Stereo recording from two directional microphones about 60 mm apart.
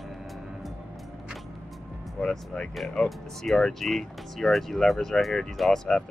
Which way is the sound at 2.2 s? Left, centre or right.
Centre.